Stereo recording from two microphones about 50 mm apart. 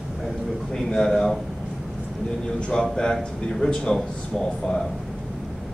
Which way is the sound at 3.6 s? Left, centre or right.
Centre.